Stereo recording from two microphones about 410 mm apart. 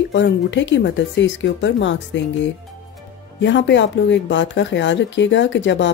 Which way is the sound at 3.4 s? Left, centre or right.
Left.